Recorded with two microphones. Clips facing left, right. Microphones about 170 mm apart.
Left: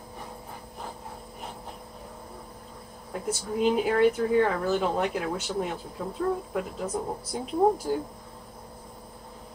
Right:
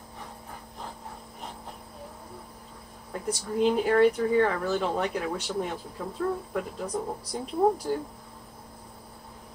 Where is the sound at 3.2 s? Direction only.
5° left (ahead or behind).